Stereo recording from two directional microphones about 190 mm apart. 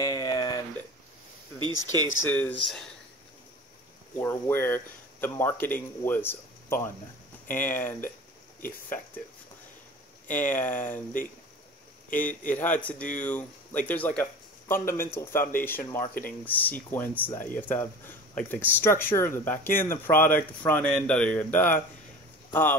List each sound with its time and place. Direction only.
0.0 s a sound: 20° left (ahead or behind)
1.9 s speech: 90° left
2.3 s speech: 10° left (ahead or behind)
4.2 s speech: 10° left (ahead or behind)
10.3 s speech: 10° left (ahead or behind)
12.2 s speech: 10° left (ahead or behind)